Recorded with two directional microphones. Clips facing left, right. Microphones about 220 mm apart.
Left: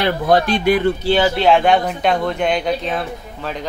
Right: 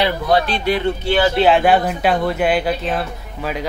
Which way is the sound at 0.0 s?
50° left (ahead or behind).